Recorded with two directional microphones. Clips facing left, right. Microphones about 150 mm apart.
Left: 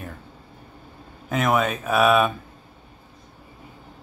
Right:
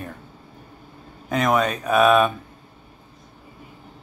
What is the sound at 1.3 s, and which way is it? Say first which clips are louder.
Speech: right 1 dB; 5° left (ahead or behind).